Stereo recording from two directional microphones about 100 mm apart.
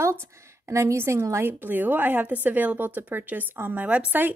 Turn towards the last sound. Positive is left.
turn(degrees=-15)  # may be behind; listen again after turning